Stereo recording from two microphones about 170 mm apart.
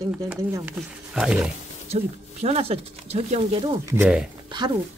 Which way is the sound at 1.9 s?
40° right (ahead or behind).